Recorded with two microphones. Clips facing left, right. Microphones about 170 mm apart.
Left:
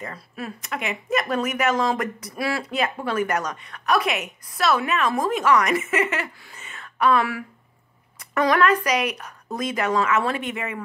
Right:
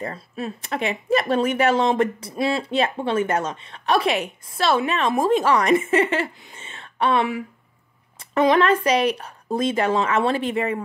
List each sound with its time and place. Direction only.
0.0 s speech: 25° right (ahead or behind)